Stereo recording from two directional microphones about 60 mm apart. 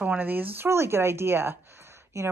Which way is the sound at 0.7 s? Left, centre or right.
Right.